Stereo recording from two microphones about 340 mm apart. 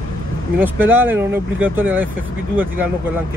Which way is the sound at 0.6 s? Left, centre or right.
Centre.